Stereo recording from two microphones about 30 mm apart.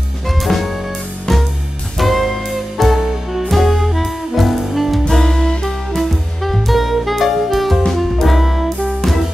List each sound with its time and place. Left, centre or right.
0.4 s music: centre
2.0 s music: centre
5.2 s music: centre
5.9 s music: centre